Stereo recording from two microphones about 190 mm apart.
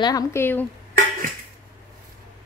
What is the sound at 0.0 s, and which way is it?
Speech, 15° left (ahead or behind).